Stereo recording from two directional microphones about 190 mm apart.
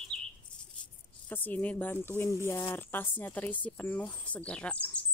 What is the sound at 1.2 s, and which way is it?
Speech, 10° left (ahead or behind).